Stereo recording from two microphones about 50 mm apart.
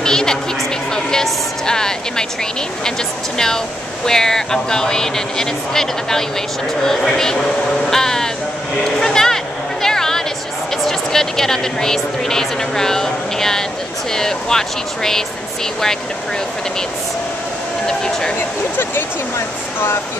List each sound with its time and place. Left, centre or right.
0.0 s a sound: centre
3.3 s speech: centre
9.0 s a sound: centre
10.9 s speech: centre
17.8 s speech: centre
19.3 s speech: left